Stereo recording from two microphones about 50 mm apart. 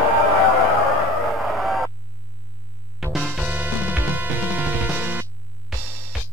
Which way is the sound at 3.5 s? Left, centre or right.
Right.